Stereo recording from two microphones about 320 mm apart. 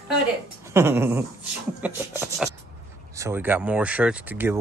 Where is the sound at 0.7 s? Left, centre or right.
Centre.